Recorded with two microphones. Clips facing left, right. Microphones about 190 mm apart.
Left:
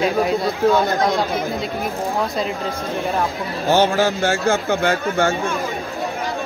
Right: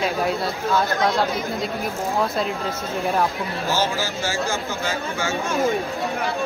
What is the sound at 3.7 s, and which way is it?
A man's voice, 60° left (ahead or behind).